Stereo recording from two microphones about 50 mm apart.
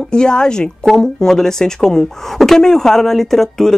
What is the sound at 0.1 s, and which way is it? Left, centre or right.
Speech, centre.